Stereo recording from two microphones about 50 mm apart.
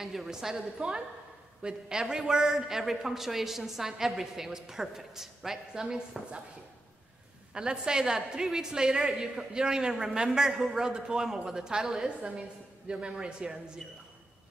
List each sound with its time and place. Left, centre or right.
0.0 s a man's voice: centre
7.5 s a man's voice: centre
13.8 s a man's voice: centre